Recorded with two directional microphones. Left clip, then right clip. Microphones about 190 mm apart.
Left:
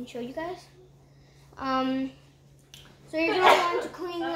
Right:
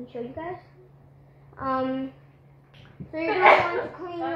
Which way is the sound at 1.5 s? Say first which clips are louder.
Right 1 dB; 35° left (ahead or behind).